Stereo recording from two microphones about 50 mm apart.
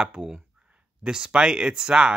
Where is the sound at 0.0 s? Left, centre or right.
Centre.